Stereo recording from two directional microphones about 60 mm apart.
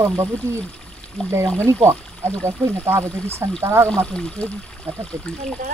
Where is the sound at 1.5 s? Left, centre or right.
Right.